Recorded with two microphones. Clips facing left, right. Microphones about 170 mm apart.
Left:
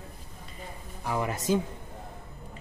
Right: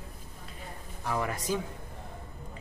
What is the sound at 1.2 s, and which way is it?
Speech, 25° left (ahead or behind).